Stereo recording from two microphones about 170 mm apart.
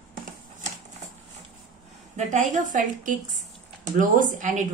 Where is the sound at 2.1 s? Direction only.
45° right (ahead or behind).